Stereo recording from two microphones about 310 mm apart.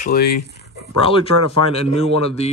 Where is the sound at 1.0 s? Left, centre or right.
Centre.